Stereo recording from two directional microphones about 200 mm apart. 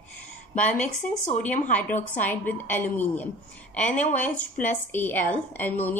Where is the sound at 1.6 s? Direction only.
10° left (ahead or behind).